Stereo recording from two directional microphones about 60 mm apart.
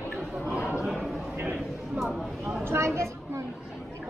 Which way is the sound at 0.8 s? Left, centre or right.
Centre.